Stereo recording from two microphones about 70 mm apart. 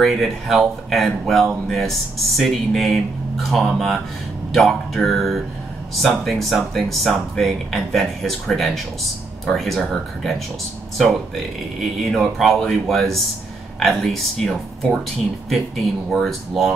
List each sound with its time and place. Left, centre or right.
0.0 s speech: centre